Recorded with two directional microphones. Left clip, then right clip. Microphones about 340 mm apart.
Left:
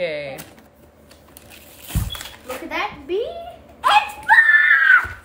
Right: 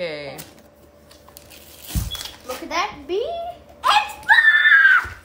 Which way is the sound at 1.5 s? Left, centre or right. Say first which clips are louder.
Left 1 dB; centre.